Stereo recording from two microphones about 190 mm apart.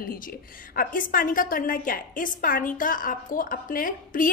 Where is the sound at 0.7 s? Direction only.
45° left (ahead or behind).